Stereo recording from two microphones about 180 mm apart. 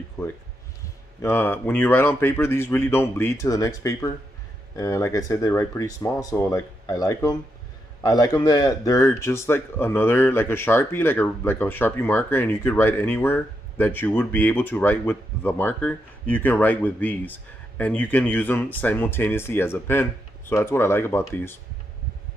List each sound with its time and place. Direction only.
0.2 s speech: 15° left (ahead or behind)